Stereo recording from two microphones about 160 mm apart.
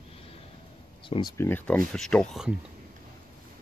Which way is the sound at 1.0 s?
30° left (ahead or behind).